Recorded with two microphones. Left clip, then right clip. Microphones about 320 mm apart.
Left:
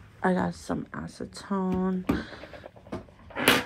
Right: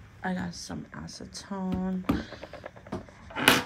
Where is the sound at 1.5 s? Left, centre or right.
Left.